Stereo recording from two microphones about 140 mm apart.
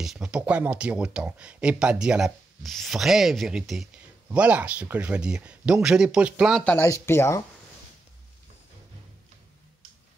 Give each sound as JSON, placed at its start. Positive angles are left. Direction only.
{"t": 0.0, "sound": "speech", "side_deg": -5}
{"t": 6.6, "sound": "speech", "side_deg": 10}